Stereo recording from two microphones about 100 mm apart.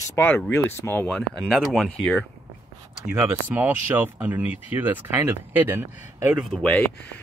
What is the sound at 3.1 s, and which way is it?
Speech, 20° right (ahead or behind).